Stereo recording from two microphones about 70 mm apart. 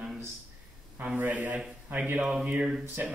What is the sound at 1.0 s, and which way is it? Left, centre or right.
Speech, right.